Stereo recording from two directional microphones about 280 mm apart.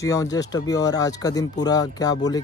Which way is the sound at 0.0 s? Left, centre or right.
Centre.